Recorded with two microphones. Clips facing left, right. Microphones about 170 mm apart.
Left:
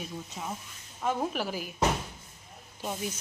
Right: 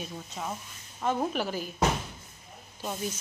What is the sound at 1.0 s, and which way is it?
Speech, centre (ahead or behind).